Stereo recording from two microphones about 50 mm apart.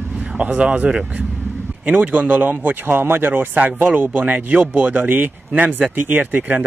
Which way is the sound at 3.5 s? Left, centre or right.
Right.